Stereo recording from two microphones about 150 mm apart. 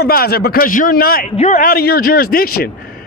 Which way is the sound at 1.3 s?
50° left (ahead or behind).